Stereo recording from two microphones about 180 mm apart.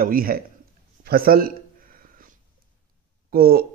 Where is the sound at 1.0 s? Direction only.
55° right (ahead or behind).